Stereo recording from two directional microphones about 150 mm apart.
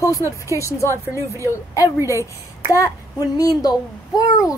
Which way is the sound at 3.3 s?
25° left (ahead or behind).